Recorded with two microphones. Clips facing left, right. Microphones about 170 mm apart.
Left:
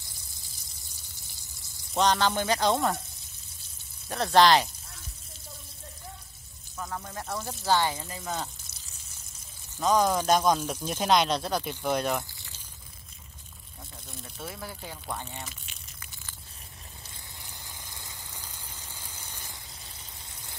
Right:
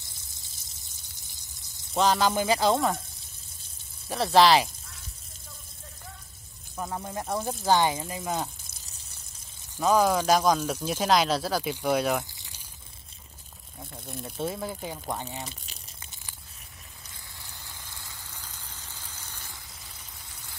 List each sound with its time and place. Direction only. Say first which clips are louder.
0.7 s a sound: left 1 dB; 20° right (ahead or behind)
2.0 s speech: right 1 dB; 5° right (ahead or behind)
4.1 s speech: right 1 dB; 5° right (ahead or behind)
6.8 s speech: right 3 dB; 25° right (ahead or behind)
7.6 s speech: right 2 dB; 15° right (ahead or behind)
8.8 s a sound: right 1 dB; 35° right (ahead or behind)
9.8 s speech: right 2 dB; 10° right (ahead or behind)
12.4 s a sound: left 1 dB; 15° right (ahead or behind)
14.0 s speech: right 9 dB; 55° right (ahead or behind)
14.3 s speech: right 8 dB; 25° right (ahead or behind)
15.4 s a sound: right 3 dB; 35° right (ahead or behind)
17.4 s vehicle: right 1 dB; 15° left (ahead or behind)